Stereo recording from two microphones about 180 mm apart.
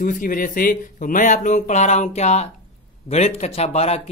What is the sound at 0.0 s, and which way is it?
Speech, 50° left (ahead or behind).